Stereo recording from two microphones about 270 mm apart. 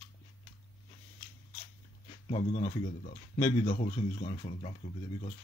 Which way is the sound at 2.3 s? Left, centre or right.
Left.